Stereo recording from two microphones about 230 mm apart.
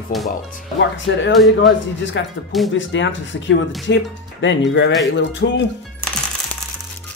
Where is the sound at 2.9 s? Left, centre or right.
Left.